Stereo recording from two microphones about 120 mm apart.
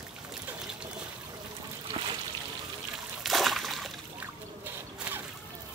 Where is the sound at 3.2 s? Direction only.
Centre (ahead or behind).